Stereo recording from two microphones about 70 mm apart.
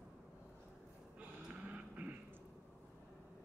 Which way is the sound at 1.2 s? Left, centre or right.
Centre.